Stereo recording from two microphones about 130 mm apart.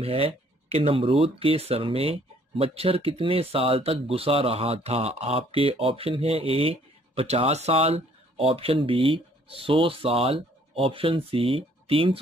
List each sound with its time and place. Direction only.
0.0 s speech: 50° right (ahead or behind)